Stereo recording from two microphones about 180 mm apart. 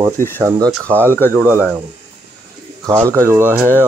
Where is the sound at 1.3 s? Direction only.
10° right (ahead or behind).